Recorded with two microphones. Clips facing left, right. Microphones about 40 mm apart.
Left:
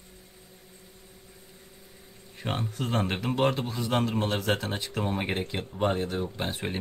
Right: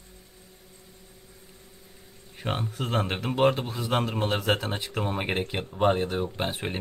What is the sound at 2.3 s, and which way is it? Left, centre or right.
Speech, centre.